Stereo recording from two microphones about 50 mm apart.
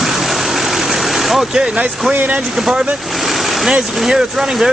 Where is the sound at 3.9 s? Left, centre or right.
Centre.